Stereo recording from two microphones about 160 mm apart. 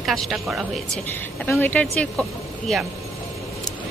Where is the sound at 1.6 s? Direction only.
10° left (ahead or behind).